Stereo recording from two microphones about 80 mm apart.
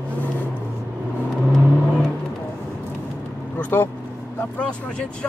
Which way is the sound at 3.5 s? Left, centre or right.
Left.